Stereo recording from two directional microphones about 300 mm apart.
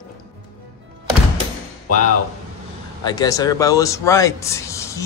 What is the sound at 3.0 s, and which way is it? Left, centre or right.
A man's voice, centre.